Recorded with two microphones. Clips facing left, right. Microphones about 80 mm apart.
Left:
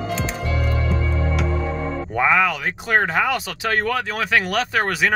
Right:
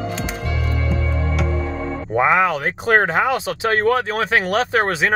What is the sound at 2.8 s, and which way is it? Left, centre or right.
Speech, right.